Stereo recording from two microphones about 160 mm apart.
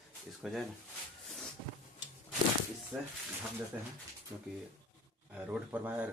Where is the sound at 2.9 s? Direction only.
10° right (ahead or behind).